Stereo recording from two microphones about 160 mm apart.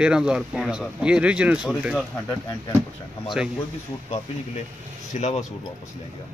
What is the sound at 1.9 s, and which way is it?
Speech, 10° left (ahead or behind).